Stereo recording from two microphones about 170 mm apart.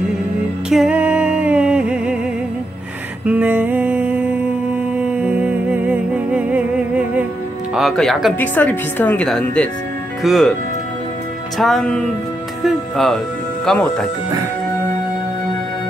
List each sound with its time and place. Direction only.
0.7 s music: 5° right (ahead or behind)
3.3 s music: 10° right (ahead or behind)
7.7 s speech: centre (ahead or behind)
11.5 s speech: centre (ahead or behind)